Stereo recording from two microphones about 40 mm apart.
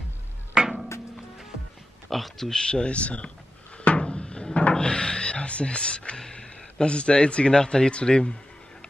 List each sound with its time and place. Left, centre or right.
0.6 s a sound: centre
2.0 s speech: centre
2.5 s a man's voice: left
4.0 s music: left
4.7 s a man's voice: centre